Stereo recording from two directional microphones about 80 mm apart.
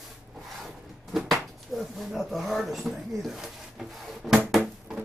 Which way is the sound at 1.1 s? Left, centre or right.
Centre.